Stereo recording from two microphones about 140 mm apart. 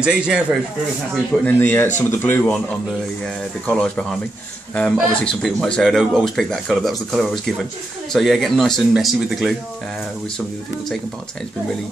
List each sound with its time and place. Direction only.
0.0 s a man's voice: 5° right (ahead or behind)
1.4 s speech: 15° left (ahead or behind)
3.6 s speech: 5° left (ahead or behind)